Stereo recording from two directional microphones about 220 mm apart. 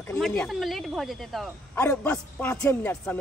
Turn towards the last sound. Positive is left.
turn(degrees=5)  # may be behind; listen again after turning